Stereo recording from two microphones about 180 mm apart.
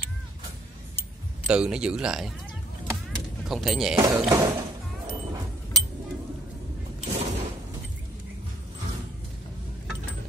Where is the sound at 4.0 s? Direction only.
20° right (ahead or behind).